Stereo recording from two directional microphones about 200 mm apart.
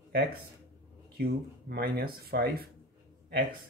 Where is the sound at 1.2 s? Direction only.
50° right (ahead or behind).